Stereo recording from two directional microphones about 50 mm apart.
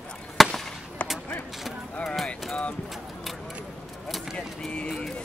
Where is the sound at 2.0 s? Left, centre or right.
Centre.